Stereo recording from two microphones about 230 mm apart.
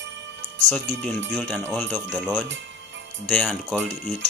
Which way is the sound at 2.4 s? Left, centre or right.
Right.